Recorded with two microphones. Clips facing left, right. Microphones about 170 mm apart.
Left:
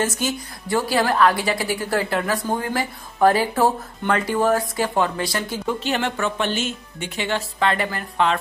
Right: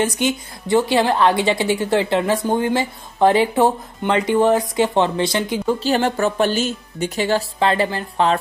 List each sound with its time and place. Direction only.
0.0 s a woman's voice: 20° right (ahead or behind)
5.8 s speech: 35° right (ahead or behind)